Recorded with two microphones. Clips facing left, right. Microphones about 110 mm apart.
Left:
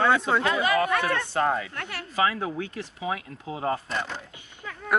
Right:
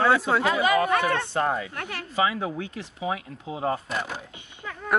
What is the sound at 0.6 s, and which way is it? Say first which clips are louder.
Speech: right 2 dB; 20° right (ahead or behind).